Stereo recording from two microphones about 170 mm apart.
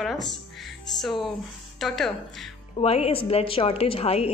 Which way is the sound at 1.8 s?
Centre (ahead or behind).